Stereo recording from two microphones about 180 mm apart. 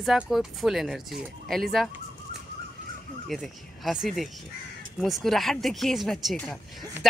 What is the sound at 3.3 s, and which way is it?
Speech, centre (ahead or behind).